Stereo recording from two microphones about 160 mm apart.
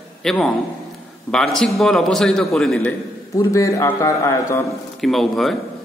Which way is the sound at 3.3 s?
20° left (ahead or behind).